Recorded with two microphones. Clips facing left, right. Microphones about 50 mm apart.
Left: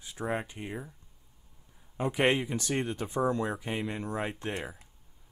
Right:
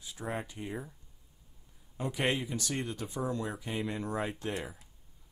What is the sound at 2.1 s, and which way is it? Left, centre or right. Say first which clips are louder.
Speech: left 5 dB; left.